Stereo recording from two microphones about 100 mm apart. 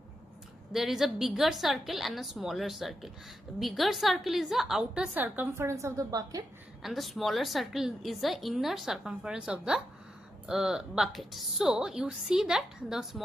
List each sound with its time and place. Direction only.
0.7 s a woman's voice: 5° right (ahead or behind)
5.2 s a woman's voice: 20° right (ahead or behind); by 6.4 s 35° right (ahead or behind)
6.8 s a woman's voice: centre (ahead or behind)